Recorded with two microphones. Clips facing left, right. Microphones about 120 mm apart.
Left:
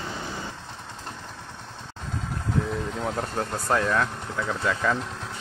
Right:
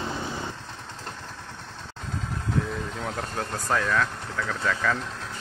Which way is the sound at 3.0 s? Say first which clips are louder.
Left 4 dB; 20° left (ahead or behind).